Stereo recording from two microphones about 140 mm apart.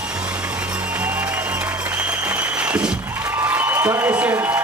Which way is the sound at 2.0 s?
10° right (ahead or behind).